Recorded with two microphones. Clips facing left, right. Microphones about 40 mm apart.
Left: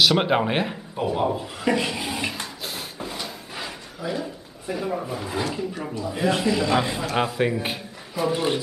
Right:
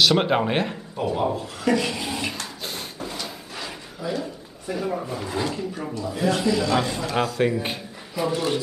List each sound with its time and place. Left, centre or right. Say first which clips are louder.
0.0 s speech: even; centre
3.0 s drawer open or close: even; centre
6.1 s a man's voice: even; centre
8.3 s a man's voice: left 1 dB; centre